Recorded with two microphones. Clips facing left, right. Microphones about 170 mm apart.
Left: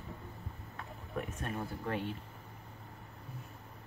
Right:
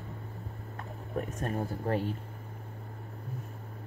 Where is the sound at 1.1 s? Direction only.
40° right (ahead or behind).